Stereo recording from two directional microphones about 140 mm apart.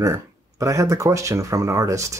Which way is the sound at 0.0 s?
20° right (ahead or behind).